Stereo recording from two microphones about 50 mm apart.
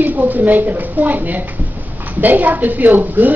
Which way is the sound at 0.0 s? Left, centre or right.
Right.